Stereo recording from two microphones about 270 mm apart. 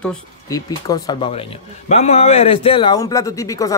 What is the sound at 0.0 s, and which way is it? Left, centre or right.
Speech, centre.